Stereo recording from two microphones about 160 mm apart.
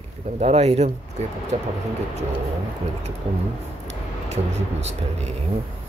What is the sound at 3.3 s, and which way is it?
Speech, 35° right (ahead or behind).